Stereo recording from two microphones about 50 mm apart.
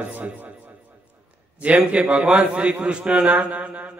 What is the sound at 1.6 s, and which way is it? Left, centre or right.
A man's voice, right.